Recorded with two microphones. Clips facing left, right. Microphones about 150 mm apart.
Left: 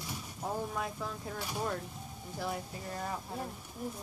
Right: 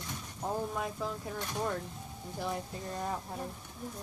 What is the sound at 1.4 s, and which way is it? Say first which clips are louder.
Speech: right 1 dB; 5° left (ahead or behind).